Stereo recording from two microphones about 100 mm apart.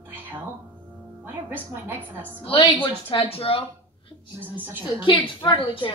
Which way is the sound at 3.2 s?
70° left (ahead or behind).